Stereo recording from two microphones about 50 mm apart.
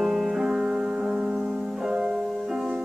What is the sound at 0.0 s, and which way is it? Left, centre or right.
Music, centre.